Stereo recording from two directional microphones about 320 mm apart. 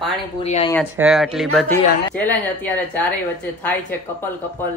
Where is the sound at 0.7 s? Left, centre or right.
Centre.